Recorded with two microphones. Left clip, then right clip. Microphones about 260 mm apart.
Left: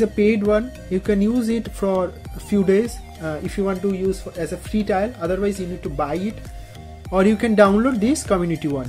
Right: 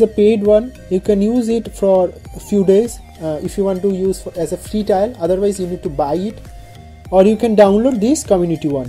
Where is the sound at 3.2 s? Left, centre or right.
Centre.